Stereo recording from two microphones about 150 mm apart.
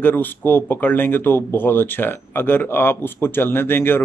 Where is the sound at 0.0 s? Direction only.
15° left (ahead or behind).